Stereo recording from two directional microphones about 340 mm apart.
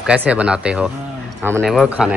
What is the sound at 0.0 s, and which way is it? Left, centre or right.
Speech, centre.